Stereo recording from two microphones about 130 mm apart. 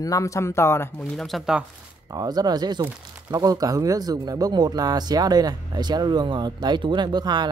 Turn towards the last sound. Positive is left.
turn(degrees=-35)  # may be behind; listen again after turning